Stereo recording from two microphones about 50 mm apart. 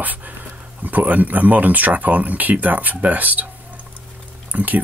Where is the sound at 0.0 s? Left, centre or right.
Right.